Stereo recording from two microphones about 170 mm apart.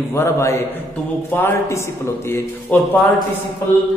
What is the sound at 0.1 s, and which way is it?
Mantra, 15° left (ahead or behind).